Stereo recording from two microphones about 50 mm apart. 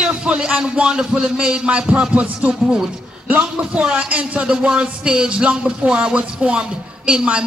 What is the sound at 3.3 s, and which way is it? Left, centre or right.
A man's voice, right.